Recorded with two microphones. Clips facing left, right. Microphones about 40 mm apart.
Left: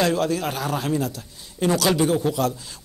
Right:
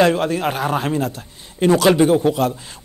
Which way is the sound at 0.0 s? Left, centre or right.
Right.